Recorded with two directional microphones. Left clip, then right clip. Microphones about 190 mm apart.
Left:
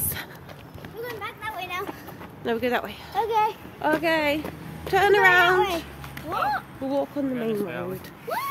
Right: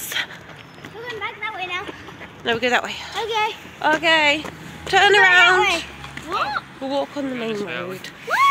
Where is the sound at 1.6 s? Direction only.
75° left (ahead or behind).